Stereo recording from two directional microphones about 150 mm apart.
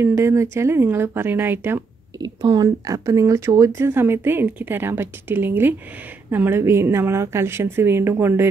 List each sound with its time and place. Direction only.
0.0 s speech: 20° right (ahead or behind)
2.1 s speech: 25° right (ahead or behind)